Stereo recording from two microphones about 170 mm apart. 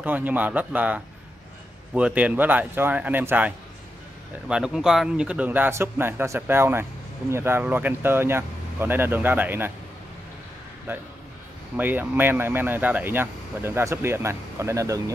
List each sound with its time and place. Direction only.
0.0 s speech: 10° right (ahead or behind)
10.9 s speech: 15° right (ahead or behind)